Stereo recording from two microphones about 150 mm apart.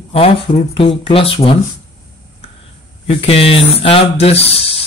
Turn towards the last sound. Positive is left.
turn(degrees=40)  # may be behind; listen again after turning